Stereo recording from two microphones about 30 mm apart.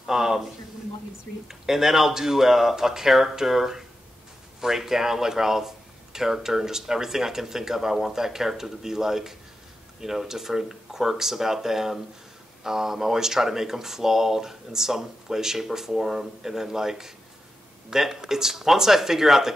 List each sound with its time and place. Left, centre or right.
0.0 s a man's voice: centre
1.5 s speech: centre